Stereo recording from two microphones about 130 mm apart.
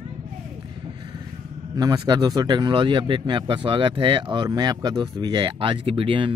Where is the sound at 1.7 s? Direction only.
30° right (ahead or behind).